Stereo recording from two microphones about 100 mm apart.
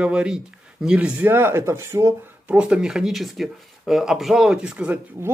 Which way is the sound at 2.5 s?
10° right (ahead or behind).